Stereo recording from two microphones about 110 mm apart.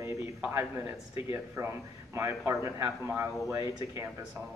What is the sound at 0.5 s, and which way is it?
A man's voice, 25° right (ahead or behind).